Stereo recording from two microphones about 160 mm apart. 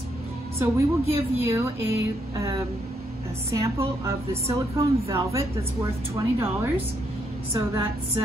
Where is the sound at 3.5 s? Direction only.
20° right (ahead or behind).